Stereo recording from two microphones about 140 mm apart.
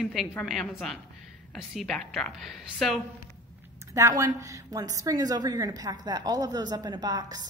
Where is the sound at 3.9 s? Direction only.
20° right (ahead or behind).